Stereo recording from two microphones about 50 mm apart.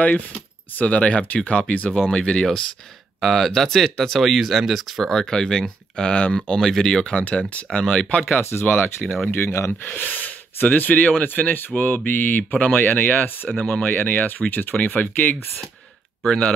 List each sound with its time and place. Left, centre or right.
0.0 s speech: left
3.2 s speech: centre
5.3 s speech: centre
8.4 s speech: left
8.6 s speech: left
10.0 s speech: left
16.3 s speech: centre